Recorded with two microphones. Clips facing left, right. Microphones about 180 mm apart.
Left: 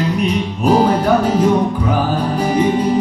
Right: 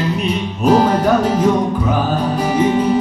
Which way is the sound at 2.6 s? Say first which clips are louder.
Right 1 dB; 10° left (ahead or behind).